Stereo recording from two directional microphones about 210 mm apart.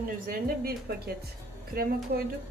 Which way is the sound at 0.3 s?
45° right (ahead or behind).